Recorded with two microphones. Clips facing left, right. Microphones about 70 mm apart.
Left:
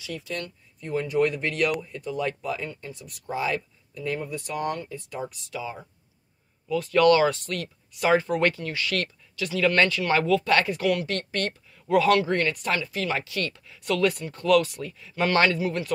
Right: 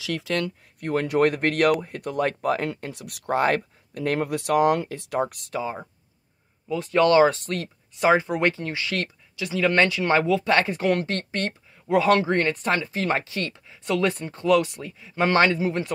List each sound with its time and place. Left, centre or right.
0.0 s speech: right
2.7 s speech: right
5.5 s speech: right
6.7 s speech: right
13.0 s speech: right
13.3 s speech: right
14.1 s speech: right
14.4 s speech: right